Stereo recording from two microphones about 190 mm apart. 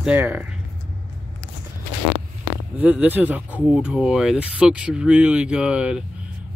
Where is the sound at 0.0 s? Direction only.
10° right (ahead or behind).